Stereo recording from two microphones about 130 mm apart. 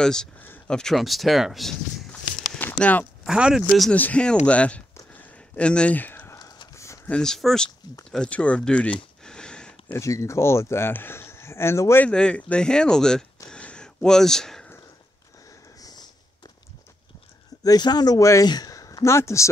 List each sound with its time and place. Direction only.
0.0 s speech: 5° left (ahead or behind)
2.6 s a sound: 10° left (ahead or behind)
3.3 s speech: 5° right (ahead or behind)
3.9 s speech: 10° left (ahead or behind)
6.3 s a sound: 30° left (ahead or behind)
7.1 s speech: 5° left (ahead or behind)
9.2 s a sound: 5° left (ahead or behind)
9.9 s speech: 25° left (ahead or behind)
12.1 s speech: 10° left (ahead or behind)
13.5 s a sound: 10° left (ahead or behind)
15.8 s snort: 30° left (ahead or behind)
17.6 s speech: 30° left (ahead or behind)